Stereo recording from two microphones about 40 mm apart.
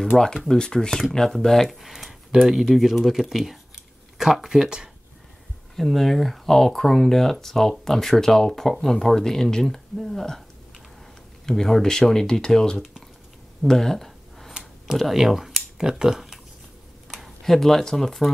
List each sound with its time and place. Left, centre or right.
0.1 s speech: centre
0.5 s speech: centre
0.7 s speech: centre
1.7 s speech: centre
5.8 s speech: centre
11.4 s speech: centre
13.7 s a sound: centre
15.1 s a sound: centre
15.9 s speech: centre
17.4 s speech: centre